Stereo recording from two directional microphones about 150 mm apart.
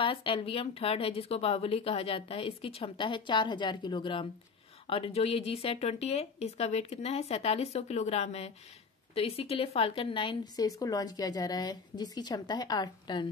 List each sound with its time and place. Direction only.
0.0 s a woman's voice: 35° left (ahead or behind)